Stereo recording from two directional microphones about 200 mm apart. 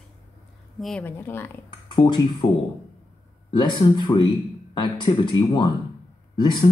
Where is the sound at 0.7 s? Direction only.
5° left (ahead or behind).